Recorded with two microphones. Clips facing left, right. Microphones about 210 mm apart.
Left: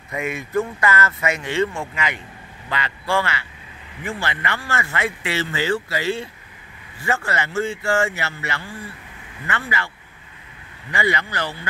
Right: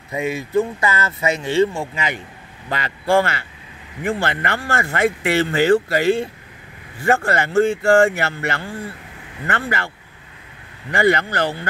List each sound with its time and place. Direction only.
0.2 s speech: 30° right (ahead or behind)
2.7 s speech: 45° right (ahead or behind)
10.9 s speech: 50° right (ahead or behind)